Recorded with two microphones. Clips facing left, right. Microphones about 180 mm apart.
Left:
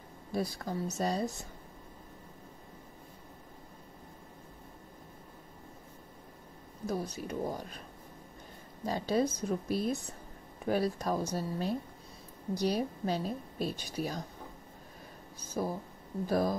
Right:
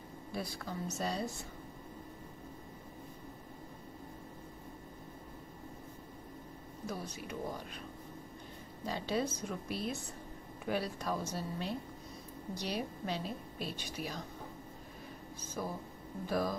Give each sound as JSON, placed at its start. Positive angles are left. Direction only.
{"t": 0.3, "sound": "a woman's voice", "side_deg": 40}
{"t": 6.9, "sound": "a woman's voice", "side_deg": 40}
{"t": 8.8, "sound": "a woman's voice", "side_deg": 40}
{"t": 15.6, "sound": "a woman's voice", "side_deg": 35}